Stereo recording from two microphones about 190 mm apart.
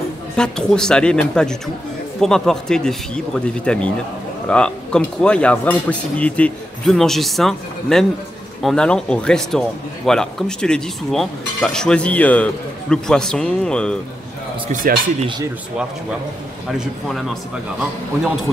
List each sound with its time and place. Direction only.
0.4 s a man's voice: 5° left (ahead or behind)
14.7 s speech: 45° right (ahead or behind)
16.7 s a man's voice: centre (ahead or behind)